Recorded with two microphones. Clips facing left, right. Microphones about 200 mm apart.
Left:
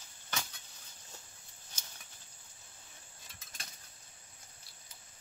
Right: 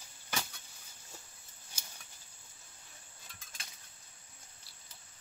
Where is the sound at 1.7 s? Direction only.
10° right (ahead or behind).